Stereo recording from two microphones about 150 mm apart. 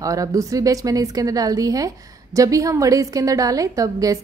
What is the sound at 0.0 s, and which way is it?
A woman's voice, 20° right (ahead or behind).